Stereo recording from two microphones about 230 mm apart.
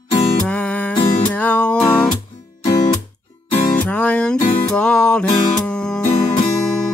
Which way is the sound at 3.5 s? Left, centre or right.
Left.